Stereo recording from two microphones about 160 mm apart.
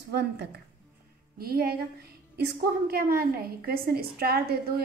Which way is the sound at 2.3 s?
85° right.